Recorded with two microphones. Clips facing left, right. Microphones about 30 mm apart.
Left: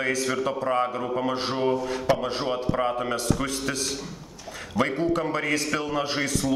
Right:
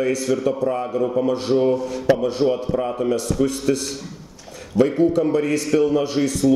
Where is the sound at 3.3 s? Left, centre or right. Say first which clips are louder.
Right 8 dB; left.